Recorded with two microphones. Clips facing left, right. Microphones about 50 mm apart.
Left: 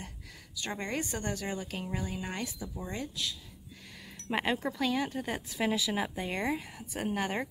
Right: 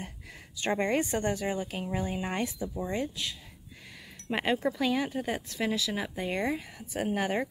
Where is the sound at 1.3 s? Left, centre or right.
Centre.